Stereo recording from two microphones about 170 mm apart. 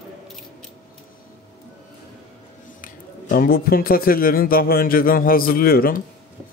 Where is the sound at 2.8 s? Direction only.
55° left (ahead or behind).